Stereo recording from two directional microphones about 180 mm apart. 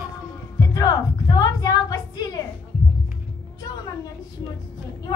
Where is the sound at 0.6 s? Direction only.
20° left (ahead or behind).